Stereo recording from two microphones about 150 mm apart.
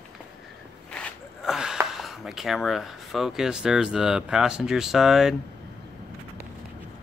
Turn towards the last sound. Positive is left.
turn(degrees=0)  # may be behind; listen again after turning